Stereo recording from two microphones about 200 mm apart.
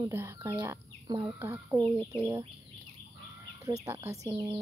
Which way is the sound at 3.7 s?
15° right (ahead or behind).